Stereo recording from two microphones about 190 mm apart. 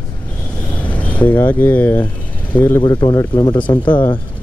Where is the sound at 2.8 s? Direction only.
20° left (ahead or behind).